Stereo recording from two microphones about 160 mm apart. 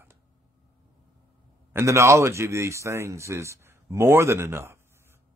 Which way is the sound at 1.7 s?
15° right (ahead or behind).